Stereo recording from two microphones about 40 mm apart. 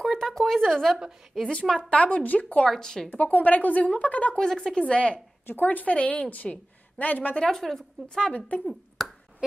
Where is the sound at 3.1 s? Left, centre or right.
Left.